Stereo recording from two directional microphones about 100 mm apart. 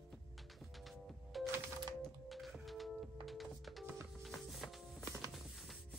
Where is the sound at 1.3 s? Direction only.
Centre (ahead or behind).